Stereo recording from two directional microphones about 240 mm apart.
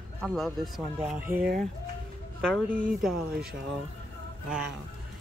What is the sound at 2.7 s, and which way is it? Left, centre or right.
Speech, centre.